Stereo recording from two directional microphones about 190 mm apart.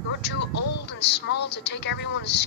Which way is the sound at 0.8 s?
65° left (ahead or behind).